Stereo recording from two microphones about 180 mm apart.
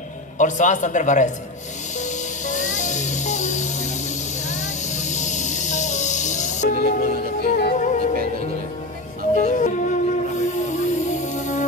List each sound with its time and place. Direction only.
0.4 s a man's voice: 45° left (ahead or behind)
2.0 s music: 40° left (ahead or behind)
9.3 s music: 45° left (ahead or behind)